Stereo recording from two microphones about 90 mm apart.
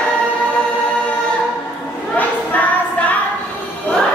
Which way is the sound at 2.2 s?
15° left (ahead or behind).